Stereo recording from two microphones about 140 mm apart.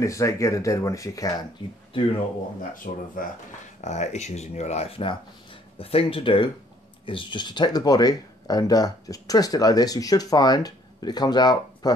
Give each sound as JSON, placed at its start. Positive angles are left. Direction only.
{"t": 0.0, "sound": "speech", "side_deg": 20}
{"t": 2.7, "sound": "speech", "side_deg": 80}
{"t": 3.8, "sound": "speech", "side_deg": 55}